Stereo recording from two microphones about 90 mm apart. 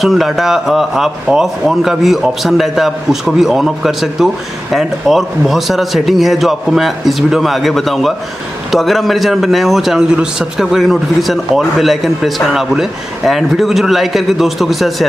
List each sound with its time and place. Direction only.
0.0 s a man's voice: centre (ahead or behind)